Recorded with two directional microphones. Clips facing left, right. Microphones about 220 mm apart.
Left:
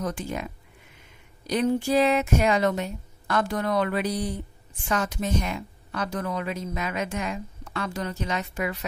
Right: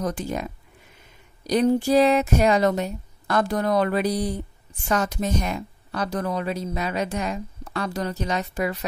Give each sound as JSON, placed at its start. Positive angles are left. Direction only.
{"t": 0.0, "sound": "a woman's voice", "side_deg": -40}